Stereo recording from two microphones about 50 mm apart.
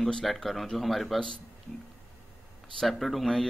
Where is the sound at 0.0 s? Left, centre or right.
Centre.